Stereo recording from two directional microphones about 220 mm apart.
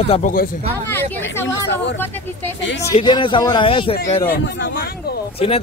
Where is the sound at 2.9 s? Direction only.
20° left (ahead or behind).